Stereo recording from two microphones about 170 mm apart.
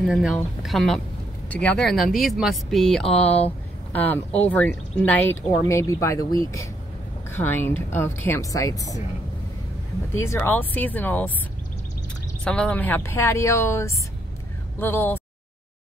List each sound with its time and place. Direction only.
0.0 s speech: 5° right (ahead or behind); by 9.0 s 20° left (ahead or behind)
10.2 s speech: 15° left (ahead or behind)
12.4 s speech: 5° left (ahead or behind)